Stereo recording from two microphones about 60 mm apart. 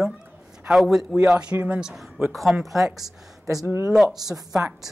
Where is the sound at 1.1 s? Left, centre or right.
Centre.